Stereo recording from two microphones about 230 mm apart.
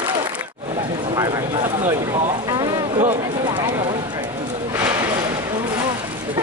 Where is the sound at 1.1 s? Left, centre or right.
Centre.